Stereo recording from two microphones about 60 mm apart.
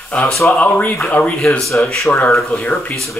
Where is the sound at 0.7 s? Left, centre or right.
Left.